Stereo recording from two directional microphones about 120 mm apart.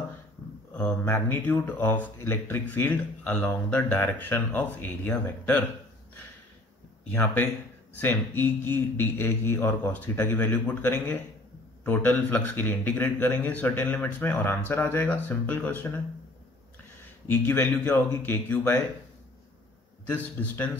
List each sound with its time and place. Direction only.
0.7 s speech: 15° left (ahead or behind)
7.9 s speech: 15° left (ahead or behind)
17.3 s speech: 15° left (ahead or behind)
20.1 s speech: 15° left (ahead or behind)